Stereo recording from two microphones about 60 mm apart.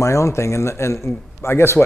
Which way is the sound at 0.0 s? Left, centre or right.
Left.